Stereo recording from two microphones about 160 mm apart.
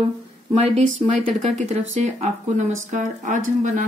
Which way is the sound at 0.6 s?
40° right (ahead or behind).